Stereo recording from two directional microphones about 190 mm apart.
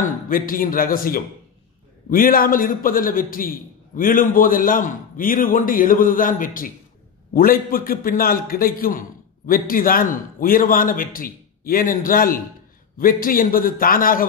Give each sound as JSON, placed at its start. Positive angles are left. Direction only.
{"t": 0.3, "sound": "a man's voice", "side_deg": 50}